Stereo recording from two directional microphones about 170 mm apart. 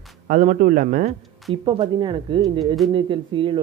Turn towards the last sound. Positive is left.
turn(degrees=-30)  # may be behind; listen again after turning